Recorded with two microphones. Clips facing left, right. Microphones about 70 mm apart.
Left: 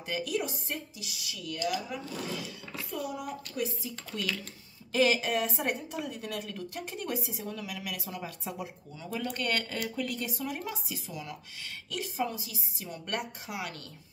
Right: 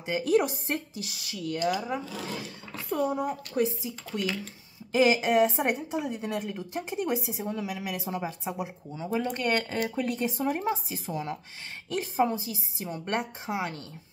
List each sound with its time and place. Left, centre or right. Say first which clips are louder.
0.4 s a woman's voice: right 7 dB; right